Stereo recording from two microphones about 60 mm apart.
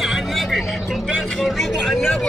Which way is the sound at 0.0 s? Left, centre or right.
Centre.